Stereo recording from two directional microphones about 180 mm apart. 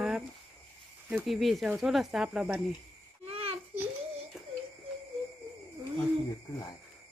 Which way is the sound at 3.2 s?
30° right (ahead or behind).